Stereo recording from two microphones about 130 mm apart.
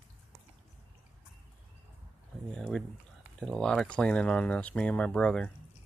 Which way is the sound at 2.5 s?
5° left (ahead or behind).